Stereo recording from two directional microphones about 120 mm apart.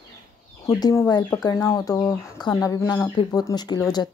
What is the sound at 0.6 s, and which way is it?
Speech, 25° left (ahead or behind).